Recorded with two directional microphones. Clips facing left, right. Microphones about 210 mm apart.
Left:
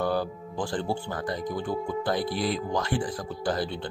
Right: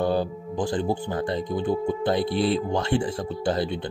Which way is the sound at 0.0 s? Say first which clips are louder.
Right 3 dB; 20° right (ahead or behind).